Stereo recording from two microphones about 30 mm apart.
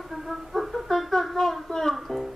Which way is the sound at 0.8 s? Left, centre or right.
Centre.